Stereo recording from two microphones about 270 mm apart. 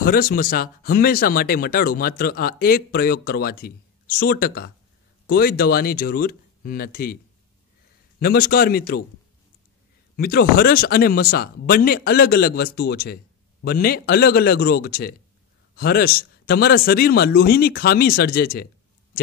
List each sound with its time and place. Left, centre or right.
0.0 s speech: left
8.2 s speech: left
10.1 s speech: left